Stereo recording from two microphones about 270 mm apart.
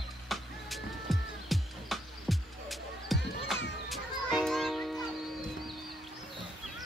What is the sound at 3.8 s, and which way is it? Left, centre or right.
Children playing, centre.